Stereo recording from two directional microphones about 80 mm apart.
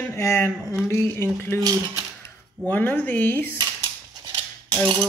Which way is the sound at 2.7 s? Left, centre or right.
Left.